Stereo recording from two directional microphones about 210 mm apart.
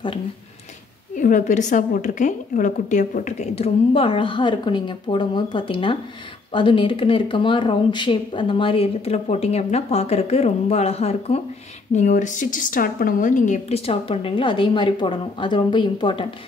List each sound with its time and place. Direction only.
1.1 s speech: 40° left (ahead or behind); by 16.3 s 20° left (ahead or behind)